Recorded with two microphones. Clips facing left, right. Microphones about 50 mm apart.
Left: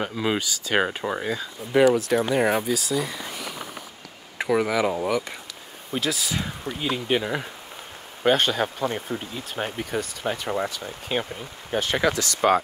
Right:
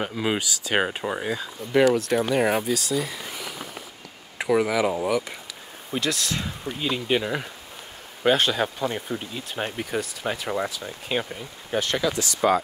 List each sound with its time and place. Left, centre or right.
0.0 s speech: centre
4.4 s speech: centre
12.0 s speech: left